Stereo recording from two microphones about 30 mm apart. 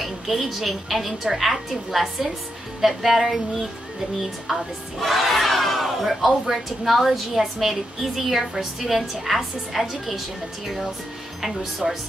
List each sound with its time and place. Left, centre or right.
0.0 s a woman's voice: centre
5.0 s battle cry: centre
6.5 s a woman's voice: centre
11.8 s speech: centre